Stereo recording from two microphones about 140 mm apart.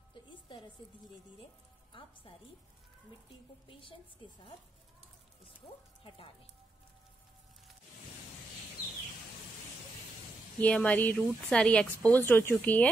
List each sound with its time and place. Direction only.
0.1 s music: 35° left (ahead or behind)
1.9 s a woman's voice: 40° left (ahead or behind)
4.2 s speech: 35° left (ahead or behind)
6.0 s speech: 40° left (ahead or behind)
10.6 s speech: 10° left (ahead or behind)